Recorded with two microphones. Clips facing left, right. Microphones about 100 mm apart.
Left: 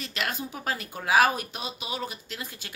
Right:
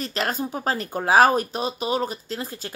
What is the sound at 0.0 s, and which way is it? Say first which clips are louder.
Speech: right 6 dB; 40° right (ahead or behind).